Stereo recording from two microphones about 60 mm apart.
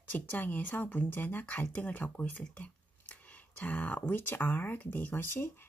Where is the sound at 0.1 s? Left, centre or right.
Left.